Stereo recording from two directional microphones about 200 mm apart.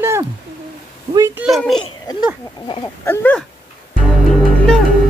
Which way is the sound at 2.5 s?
20° left (ahead or behind).